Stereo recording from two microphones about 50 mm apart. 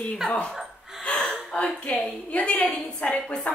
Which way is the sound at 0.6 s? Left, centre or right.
Centre.